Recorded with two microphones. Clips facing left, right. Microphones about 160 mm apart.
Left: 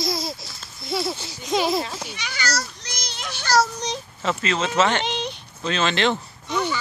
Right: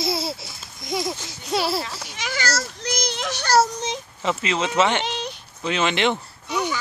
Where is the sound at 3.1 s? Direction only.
85° right.